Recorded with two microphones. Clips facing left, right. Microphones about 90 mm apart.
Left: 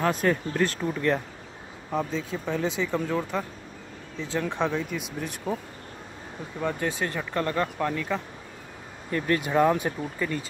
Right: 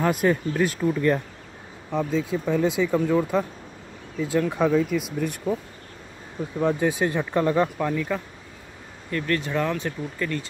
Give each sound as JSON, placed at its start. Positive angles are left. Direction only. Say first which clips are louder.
{"t": 0.0, "sound": "speech", "louder": "right 3 dB", "side_deg": -5}
{"t": 6.6, "sound": "speech", "louder": "right 6 dB", "side_deg": -15}
{"t": 7.7, "sound": "speech", "louder": "right 2 dB", "side_deg": 0}
{"t": 9.1, "sound": "speech", "louder": "left 1 dB", "side_deg": 20}